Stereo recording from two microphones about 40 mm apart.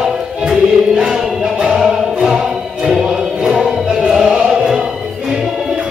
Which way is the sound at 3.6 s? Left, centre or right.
Centre.